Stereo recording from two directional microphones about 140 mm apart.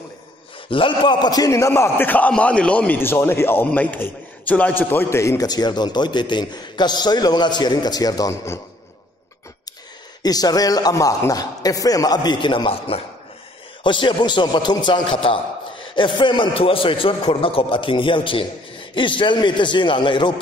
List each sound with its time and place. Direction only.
0.7 s a man's voice: 35° left (ahead or behind)
10.2 s a man's voice: 25° left (ahead or behind)